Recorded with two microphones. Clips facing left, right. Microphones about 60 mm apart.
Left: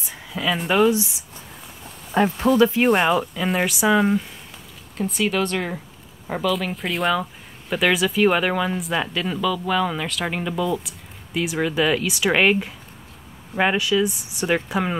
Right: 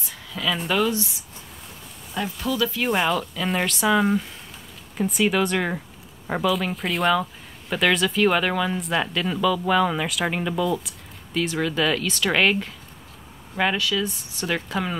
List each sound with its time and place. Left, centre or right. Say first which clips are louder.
0.1 s a sound: left 2 dB; centre
0.6 s speech: left 6 dB; left
2.1 s speech: left 8 dB; left
3.1 s speech: left 4 dB; centre
3.4 s speech: left 1 dB; centre
4.9 s speech: right 1 dB; centre
6.5 s speech: even; centre